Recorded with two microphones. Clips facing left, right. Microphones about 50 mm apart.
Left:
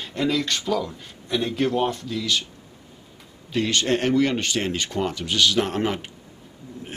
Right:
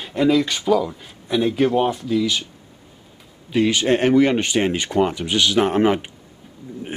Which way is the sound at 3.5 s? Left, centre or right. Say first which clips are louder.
Right 5 dB; centre.